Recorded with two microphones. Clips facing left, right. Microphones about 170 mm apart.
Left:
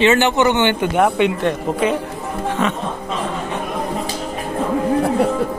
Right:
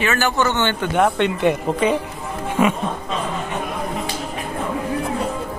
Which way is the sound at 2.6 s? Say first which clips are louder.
Right 4 dB; 10° right (ahead or behind).